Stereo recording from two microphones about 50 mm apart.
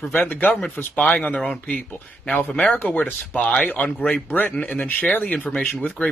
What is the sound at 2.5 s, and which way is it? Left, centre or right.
Speech, left.